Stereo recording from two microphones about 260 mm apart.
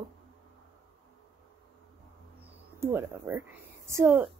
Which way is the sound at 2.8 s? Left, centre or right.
Centre.